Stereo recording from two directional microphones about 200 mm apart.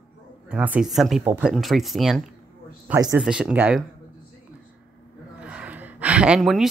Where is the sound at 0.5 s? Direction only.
5° right (ahead or behind).